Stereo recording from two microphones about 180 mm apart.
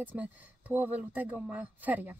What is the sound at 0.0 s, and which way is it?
Speech, 10° right (ahead or behind).